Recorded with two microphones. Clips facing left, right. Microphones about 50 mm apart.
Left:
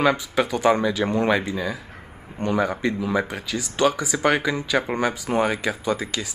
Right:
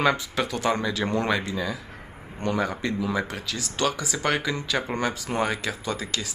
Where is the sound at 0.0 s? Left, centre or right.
Centre.